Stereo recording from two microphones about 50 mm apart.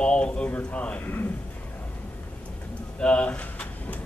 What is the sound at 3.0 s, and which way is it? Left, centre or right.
Speech, left.